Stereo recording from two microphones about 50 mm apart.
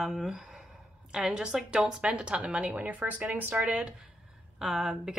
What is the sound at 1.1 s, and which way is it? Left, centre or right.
Speech, centre.